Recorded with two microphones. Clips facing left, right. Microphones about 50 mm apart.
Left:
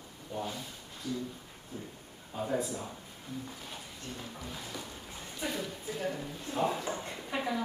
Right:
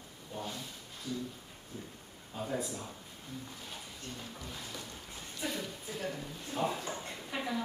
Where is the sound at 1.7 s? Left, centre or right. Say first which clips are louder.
Left 3 dB; left.